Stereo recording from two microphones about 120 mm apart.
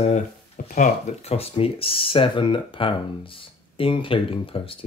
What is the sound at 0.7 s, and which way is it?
Speech, 85° left.